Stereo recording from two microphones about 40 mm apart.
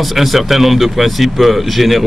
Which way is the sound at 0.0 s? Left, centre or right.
Centre.